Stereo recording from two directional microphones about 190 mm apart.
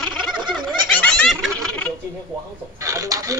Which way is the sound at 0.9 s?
5° left (ahead or behind).